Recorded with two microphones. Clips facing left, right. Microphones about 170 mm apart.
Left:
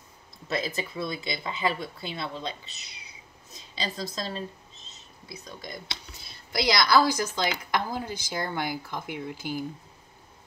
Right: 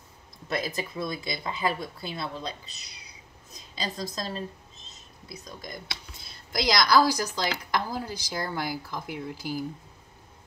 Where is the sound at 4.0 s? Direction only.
45° right (ahead or behind).